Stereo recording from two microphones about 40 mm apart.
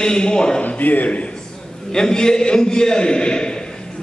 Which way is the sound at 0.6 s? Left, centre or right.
Left.